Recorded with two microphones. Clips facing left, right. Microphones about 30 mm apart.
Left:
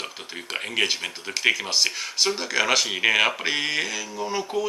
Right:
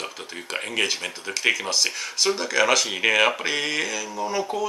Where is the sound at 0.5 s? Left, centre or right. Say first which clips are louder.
Even; centre.